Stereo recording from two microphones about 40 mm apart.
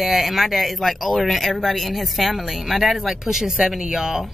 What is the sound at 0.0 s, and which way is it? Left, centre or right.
Speech, centre.